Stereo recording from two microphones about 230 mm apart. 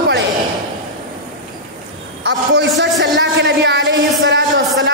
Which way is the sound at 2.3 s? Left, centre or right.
Right.